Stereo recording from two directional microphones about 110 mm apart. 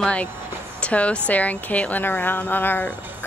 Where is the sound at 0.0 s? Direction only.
10° left (ahead or behind).